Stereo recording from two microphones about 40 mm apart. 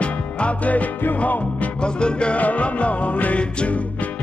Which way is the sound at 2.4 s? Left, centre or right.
Left.